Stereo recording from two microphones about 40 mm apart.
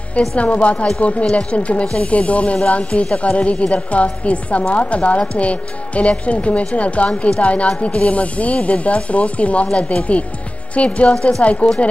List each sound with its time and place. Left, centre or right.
0.4 s speech: left